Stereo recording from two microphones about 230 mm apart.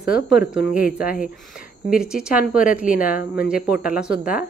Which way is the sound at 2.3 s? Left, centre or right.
Left.